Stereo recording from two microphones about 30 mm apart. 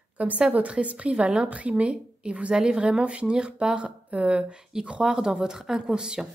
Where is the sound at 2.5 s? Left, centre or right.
Right.